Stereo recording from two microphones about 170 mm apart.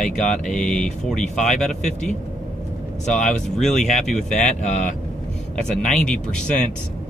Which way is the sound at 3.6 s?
40° left (ahead or behind).